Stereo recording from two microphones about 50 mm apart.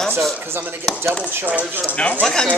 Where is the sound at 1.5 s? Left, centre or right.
Right.